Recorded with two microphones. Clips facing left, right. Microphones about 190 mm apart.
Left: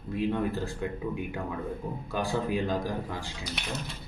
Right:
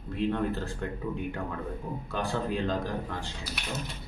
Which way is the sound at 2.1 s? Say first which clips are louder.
Left 2 dB; 10° left (ahead or behind).